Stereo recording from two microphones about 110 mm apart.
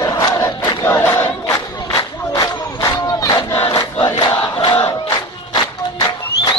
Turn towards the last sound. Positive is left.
turn(degrees=35)  # may be behind; listen again after turning